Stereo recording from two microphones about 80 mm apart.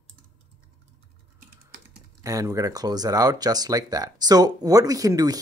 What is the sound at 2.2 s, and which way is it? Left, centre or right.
Speech, right.